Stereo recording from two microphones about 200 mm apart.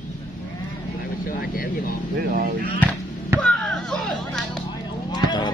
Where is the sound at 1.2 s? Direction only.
45° left (ahead or behind).